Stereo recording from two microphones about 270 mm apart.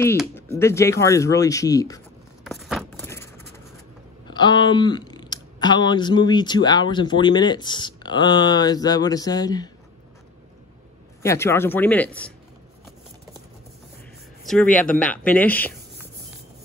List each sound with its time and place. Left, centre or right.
0.2 s speech: centre
2.4 s a sound: centre
4.3 s speech: centre
11.2 s speech: centre
14.4 s speech: centre